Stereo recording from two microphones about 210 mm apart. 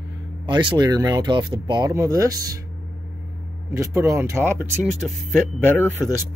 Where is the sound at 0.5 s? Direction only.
20° right (ahead or behind).